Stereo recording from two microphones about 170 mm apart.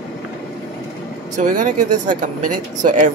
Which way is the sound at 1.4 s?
50° right (ahead or behind).